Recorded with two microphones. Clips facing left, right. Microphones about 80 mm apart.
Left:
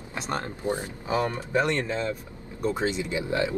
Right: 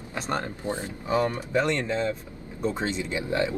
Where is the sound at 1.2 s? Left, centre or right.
Left.